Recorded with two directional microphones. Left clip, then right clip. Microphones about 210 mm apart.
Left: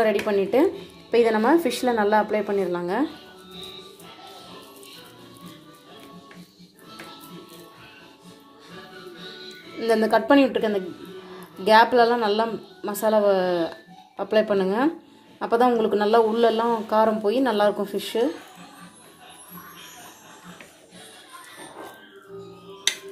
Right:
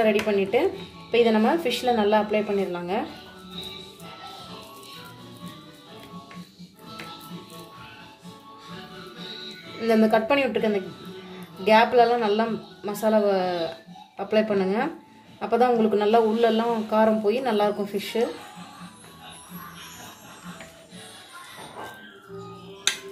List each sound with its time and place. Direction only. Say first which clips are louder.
0.0 s a man's voice: even; 30° left (ahead or behind)
10.0 s a man's voice: left 5 dB; 25° left (ahead or behind)